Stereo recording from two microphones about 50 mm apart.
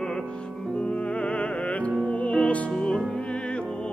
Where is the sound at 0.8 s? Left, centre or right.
Left.